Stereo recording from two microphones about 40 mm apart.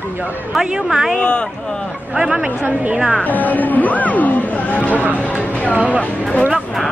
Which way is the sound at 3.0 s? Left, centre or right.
Centre.